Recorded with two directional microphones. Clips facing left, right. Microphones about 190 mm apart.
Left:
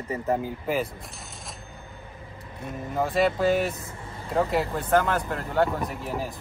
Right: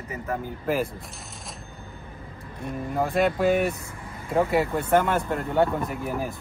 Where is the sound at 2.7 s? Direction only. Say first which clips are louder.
Right 1 dB; centre (ahead or behind).